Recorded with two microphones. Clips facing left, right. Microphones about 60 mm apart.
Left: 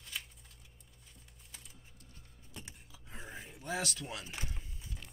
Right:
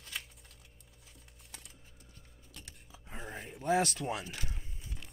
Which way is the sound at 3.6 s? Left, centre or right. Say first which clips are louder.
Right 9 dB; right.